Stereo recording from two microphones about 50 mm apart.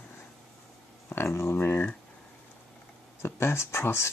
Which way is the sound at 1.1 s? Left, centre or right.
Left.